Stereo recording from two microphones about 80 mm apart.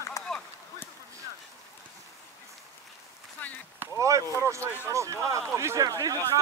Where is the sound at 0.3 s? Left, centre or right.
Centre.